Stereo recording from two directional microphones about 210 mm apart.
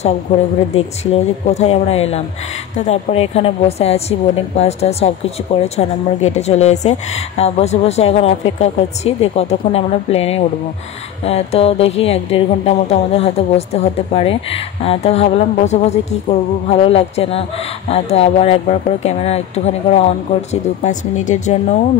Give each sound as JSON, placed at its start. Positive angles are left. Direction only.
{"t": 0.3, "sound": "a woman's voice", "side_deg": 30}